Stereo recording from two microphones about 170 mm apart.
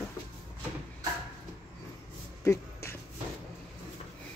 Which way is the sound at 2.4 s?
15° left (ahead or behind).